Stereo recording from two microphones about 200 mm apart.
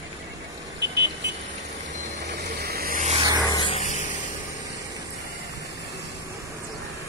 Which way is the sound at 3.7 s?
35° left (ahead or behind).